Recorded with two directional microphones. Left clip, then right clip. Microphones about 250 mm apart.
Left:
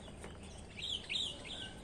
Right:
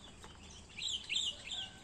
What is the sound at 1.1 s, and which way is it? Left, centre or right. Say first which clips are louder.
Bird: right 1 dB; centre.